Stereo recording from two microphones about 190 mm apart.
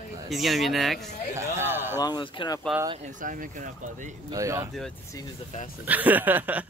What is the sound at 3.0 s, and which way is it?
Speech, 45° right (ahead or behind).